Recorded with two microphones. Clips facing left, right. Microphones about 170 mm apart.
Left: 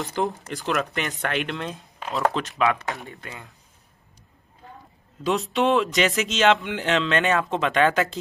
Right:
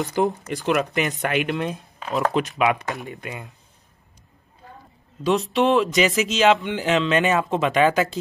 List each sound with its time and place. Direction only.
0.2 s speech: 10° right (ahead or behind)
5.2 s speech: centre (ahead or behind)